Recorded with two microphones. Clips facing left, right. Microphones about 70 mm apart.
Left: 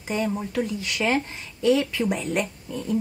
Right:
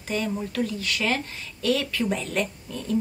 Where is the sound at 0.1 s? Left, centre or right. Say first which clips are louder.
Left 2 dB; centre.